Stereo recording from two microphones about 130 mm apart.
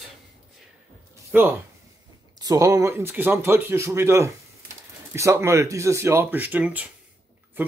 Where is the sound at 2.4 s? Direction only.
30° right (ahead or behind); by 6.9 s 10° right (ahead or behind).